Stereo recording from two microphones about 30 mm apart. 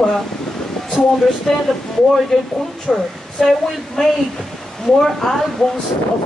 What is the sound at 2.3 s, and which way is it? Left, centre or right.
Speech, left.